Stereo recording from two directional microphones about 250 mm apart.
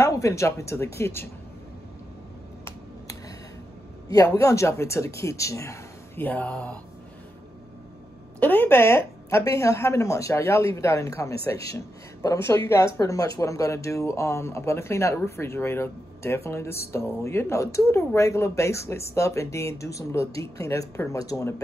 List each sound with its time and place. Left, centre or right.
0.0 s speech: centre
2.6 s finger snapping: centre
4.1 s speech: centre
8.4 s speech: centre